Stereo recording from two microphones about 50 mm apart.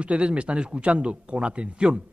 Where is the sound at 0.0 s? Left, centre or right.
Right.